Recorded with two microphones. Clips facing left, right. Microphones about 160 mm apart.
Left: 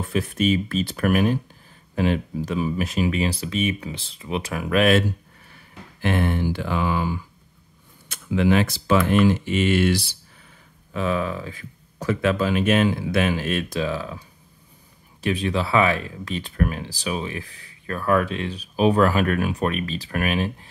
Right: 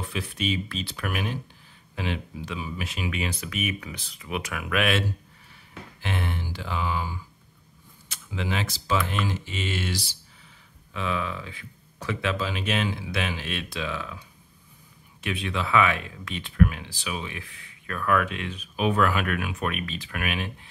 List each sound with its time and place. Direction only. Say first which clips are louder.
0.0 s speech: left 8 dB; 45° left (ahead or behind)
5.5 s speech: right 1 dB; 55° left (ahead or behind)
10.9 s speech: left 6 dB; 40° left (ahead or behind)
15.2 s speech: left 6 dB; 35° left (ahead or behind)